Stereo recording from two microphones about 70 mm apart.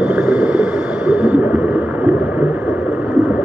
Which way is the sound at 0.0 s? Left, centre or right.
Centre.